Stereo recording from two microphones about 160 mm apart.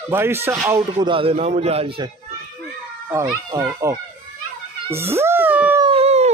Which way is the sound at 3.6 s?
20° right (ahead or behind).